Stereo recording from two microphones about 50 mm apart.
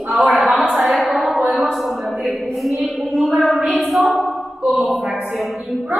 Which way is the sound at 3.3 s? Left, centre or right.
Centre.